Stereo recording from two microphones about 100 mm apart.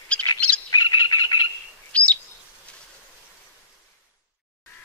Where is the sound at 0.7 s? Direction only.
45° left (ahead or behind).